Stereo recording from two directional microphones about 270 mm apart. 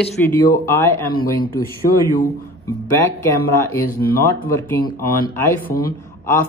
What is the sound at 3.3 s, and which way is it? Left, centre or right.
Speech, centre.